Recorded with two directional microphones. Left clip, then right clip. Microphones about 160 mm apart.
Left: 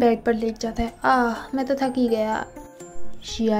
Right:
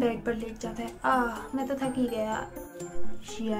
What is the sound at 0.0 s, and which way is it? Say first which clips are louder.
A woman's voice: left 9 dB; 35° left (ahead or behind).